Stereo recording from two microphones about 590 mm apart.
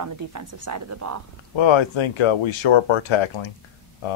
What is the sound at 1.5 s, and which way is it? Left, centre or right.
Speech, left.